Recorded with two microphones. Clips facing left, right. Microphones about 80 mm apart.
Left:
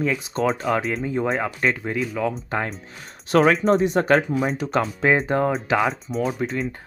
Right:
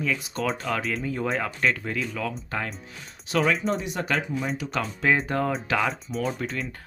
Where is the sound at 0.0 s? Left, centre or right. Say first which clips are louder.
Left 4 dB; left.